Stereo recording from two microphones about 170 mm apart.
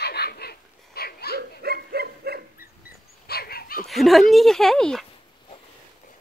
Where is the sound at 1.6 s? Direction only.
65° right (ahead or behind).